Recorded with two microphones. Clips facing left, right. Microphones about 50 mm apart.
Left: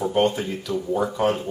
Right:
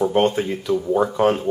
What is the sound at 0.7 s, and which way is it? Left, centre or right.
Speech, centre.